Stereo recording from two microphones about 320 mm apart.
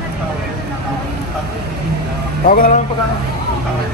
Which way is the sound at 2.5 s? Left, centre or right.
Left.